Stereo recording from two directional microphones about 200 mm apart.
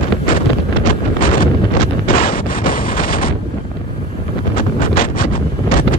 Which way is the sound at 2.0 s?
45° left (ahead or behind).